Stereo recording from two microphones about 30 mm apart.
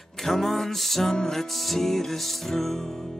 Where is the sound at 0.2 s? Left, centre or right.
Centre.